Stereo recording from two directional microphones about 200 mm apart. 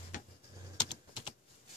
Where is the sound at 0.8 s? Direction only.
20° left (ahead or behind).